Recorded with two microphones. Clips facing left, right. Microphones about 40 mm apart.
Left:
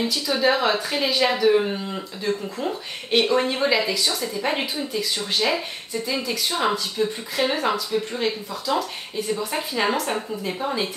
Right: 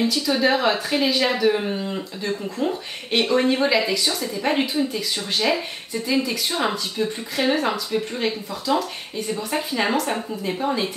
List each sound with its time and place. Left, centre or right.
0.0 s speech: centre